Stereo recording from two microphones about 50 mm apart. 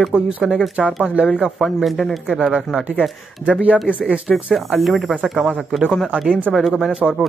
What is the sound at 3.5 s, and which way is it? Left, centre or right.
Speech, right.